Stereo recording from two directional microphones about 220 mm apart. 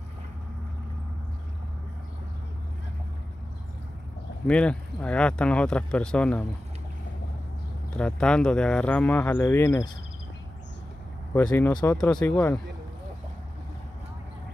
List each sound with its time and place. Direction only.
4.5 s speech: 5° left (ahead or behind)
8.0 s speech: 5° left (ahead or behind)
11.3 s speech: 10° left (ahead or behind)